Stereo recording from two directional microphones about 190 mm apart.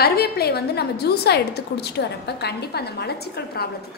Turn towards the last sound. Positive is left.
turn(degrees=60)  # may be behind; listen again after turning